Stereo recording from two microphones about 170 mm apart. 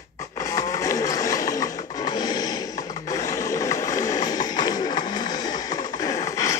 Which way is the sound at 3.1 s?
20° left (ahead or behind).